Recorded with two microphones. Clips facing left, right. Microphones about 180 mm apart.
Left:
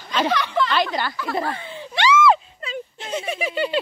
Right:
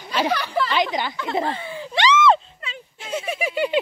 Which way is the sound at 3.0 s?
5° right (ahead or behind).